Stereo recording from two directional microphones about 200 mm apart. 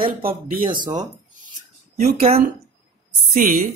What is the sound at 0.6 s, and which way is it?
Speech, 25° right (ahead or behind).